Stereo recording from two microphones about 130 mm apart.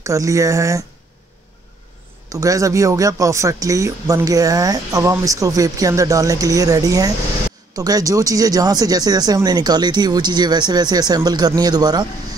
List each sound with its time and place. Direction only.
0.0 s speech: 25° right (ahead or behind)
2.2 s speech: 25° right (ahead or behind)